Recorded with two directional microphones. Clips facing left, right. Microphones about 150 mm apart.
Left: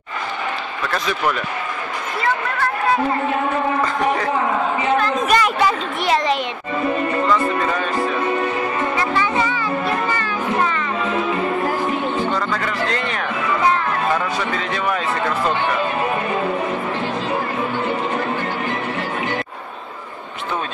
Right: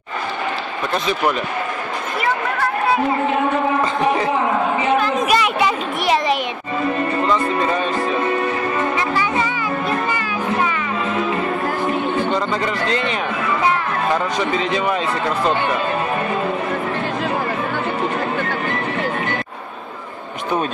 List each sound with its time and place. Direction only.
0.9 s speech: 25° right (ahead or behind)
4.9 s a child's voice: 10° right (ahead or behind)
12.3 s speech: 20° right (ahead or behind)
14.1 s speech: 20° right (ahead or behind)